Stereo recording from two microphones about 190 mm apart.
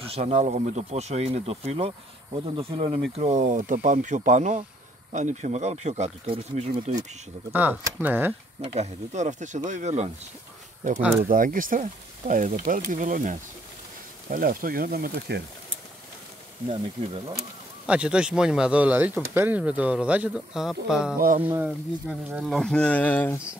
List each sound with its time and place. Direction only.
0.0 s speech: 35° right (ahead or behind)
3.2 s speech: 40° right (ahead or behind)
7.5 s speech: 10° right (ahead or behind)
8.7 s speech: 35° right (ahead or behind); by 15.4 s 55° right (ahead or behind)
17.8 s speech: 5° right (ahead or behind)